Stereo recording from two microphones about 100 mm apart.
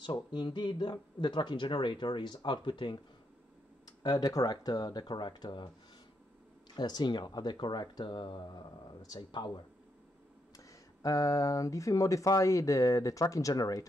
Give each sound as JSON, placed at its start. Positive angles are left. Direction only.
{"t": 0.3, "sound": "speech", "side_deg": 50}
{"t": 6.7, "sound": "speech", "side_deg": 45}
{"t": 10.5, "sound": "speech", "side_deg": 35}